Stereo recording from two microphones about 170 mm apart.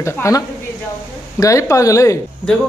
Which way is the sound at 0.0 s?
15° left (ahead or behind).